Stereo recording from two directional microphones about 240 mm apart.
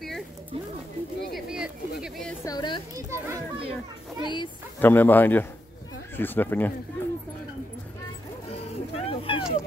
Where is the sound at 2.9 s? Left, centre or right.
Centre.